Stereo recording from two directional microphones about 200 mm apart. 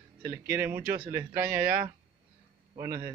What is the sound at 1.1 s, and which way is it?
Speech, 10° right (ahead or behind).